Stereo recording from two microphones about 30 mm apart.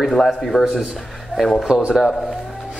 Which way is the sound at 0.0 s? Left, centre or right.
Centre.